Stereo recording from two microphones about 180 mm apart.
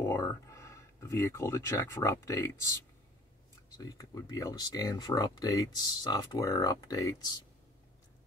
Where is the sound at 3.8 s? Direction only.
20° left (ahead or behind).